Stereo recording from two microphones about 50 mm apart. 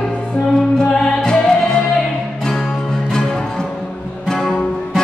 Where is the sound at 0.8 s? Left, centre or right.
Centre.